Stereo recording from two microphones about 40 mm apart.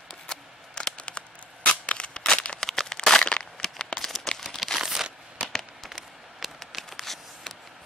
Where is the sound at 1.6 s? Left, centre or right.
Left.